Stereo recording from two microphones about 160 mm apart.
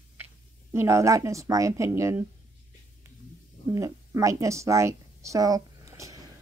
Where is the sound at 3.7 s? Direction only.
20° right (ahead or behind).